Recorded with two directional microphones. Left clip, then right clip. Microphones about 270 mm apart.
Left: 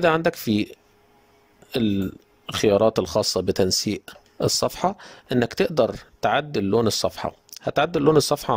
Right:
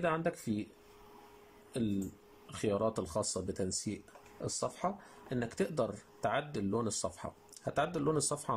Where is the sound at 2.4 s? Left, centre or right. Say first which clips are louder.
Left 16 dB; left.